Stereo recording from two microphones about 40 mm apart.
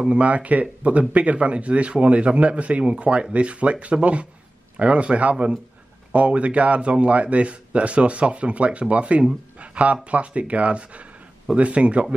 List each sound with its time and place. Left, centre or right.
0.0 s a man's voice: right